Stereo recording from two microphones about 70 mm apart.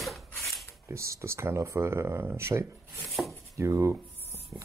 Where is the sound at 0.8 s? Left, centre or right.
Right.